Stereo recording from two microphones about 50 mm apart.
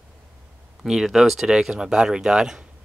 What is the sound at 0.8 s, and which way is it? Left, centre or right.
Speech, centre.